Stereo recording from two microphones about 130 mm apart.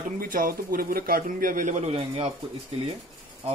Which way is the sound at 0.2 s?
90° right.